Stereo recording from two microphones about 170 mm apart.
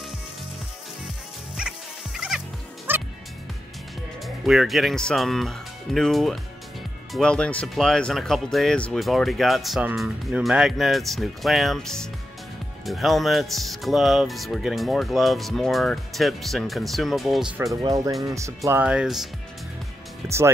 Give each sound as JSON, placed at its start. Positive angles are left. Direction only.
{"t": 1.6, "sound": "dog", "side_deg": -5}
{"t": 2.9, "sound": "music", "side_deg": -10}
{"t": 4.5, "sound": "speech", "side_deg": 0}
{"t": 17.8, "sound": "speech", "side_deg": -20}
{"t": 20.2, "sound": "speech", "side_deg": -15}